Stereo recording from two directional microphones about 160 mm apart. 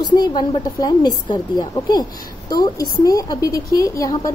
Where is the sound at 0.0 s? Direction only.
25° left (ahead or behind).